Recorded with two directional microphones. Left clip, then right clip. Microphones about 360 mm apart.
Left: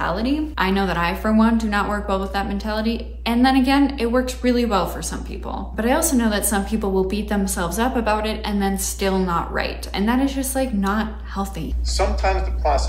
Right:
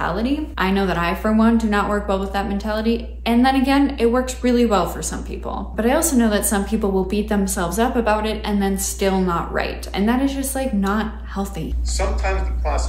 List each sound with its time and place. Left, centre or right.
0.0 s a woman's voice: centre
12.0 s speech: left